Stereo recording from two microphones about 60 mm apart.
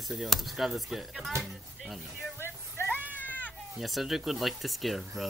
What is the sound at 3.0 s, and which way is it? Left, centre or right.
Sheep, right.